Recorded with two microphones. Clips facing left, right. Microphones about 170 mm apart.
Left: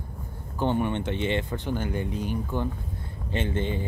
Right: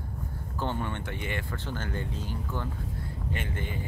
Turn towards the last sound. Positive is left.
turn(degrees=25)  # may be behind; listen again after turning